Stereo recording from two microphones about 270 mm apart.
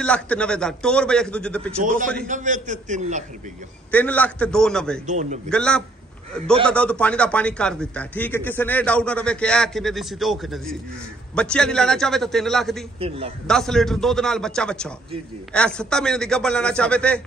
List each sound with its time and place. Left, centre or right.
0.0 s a man's voice: centre
2.2 s a man's voice: right
3.9 s a man's voice: centre
5.0 s a man's voice: right
5.5 s a man's voice: centre